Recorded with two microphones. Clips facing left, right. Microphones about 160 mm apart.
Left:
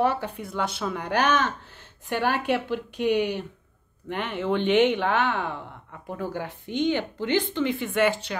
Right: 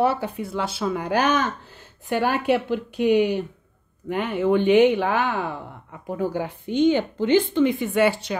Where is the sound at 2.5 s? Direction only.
10° right (ahead or behind).